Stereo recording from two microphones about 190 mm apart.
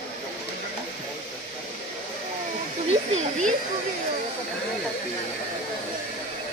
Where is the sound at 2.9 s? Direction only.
35° right (ahead or behind).